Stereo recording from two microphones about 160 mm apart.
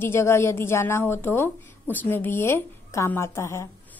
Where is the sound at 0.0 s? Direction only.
15° left (ahead or behind).